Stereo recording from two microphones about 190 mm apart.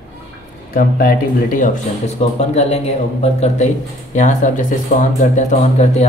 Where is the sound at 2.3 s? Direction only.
35° left (ahead or behind).